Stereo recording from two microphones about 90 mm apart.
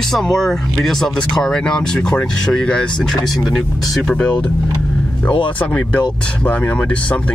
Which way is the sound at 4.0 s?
10° left (ahead or behind).